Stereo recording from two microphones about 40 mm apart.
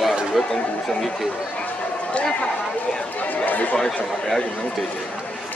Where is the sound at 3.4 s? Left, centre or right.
Left.